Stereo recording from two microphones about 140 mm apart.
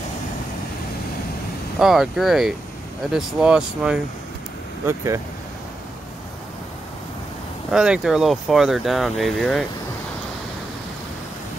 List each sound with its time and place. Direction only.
1.8 s speech: centre (ahead or behind)
4.8 s speech: 20° right (ahead or behind)
7.7 s speech: 5° right (ahead or behind)